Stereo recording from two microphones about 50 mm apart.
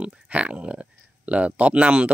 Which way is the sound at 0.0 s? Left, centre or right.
Right.